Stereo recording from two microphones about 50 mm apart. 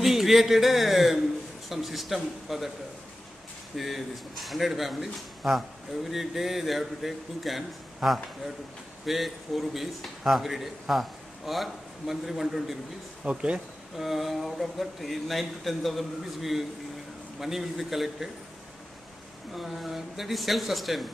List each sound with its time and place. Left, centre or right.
0.0 s a man's voice: centre
3.7 s a man's voice: centre
13.2 s speech: right
13.9 s a man's voice: centre
19.5 s a man's voice: centre